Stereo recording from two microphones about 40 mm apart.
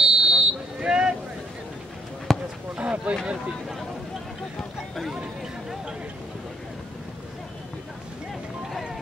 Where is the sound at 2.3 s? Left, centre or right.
Centre.